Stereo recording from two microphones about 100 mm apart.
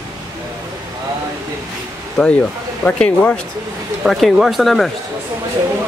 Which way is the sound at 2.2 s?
15° left (ahead or behind).